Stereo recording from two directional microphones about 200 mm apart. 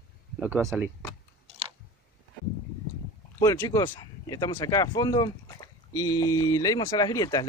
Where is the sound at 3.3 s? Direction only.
15° left (ahead or behind).